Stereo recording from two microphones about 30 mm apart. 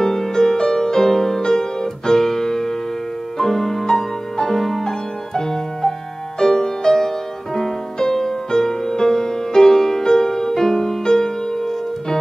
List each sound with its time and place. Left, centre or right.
0.0 s music: centre